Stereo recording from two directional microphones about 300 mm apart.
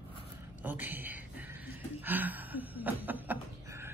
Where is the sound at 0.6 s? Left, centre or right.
Centre.